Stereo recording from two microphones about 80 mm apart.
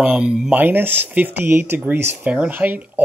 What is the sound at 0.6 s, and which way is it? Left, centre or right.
Speech, right.